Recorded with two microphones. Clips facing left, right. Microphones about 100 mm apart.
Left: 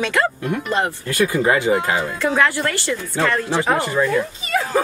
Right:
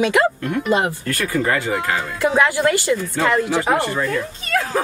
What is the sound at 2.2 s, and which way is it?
Speech, 15° right (ahead or behind).